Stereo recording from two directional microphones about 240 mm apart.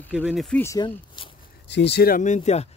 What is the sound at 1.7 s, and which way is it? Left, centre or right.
Speech, left.